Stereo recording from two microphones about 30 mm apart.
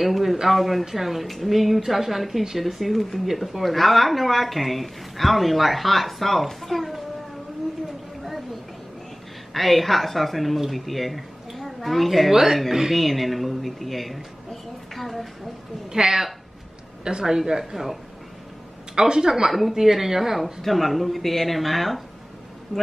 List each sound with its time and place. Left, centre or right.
0.0 s speech: centre
9.5 s a woman's voice: centre
12.3 s a woman's voice: centre
12.9 s speech: centre
15.9 s a woman's voice: centre
18.9 s speech: right
19.7 s a woman's voice: centre
20.6 s speech: centre